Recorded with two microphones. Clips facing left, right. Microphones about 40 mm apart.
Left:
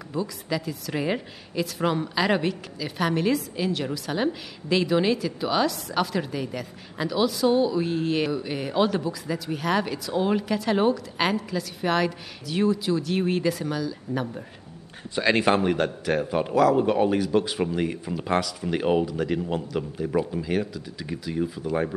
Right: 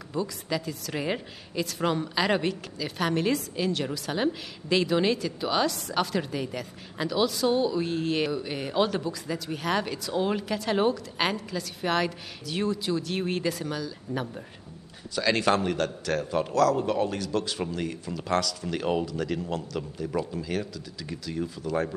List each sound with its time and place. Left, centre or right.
0.1 s a woman's voice: centre
15.1 s a man's voice: left